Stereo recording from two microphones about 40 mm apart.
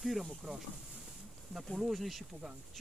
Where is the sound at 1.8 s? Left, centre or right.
Centre.